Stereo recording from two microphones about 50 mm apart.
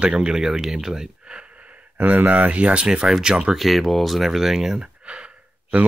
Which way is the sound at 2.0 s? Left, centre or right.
Right.